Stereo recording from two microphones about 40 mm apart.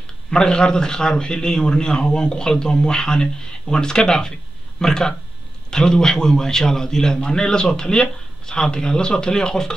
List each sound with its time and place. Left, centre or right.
0.3 s a man's voice: left